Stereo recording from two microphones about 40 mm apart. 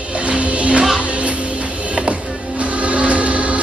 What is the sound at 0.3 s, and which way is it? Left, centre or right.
Music, right.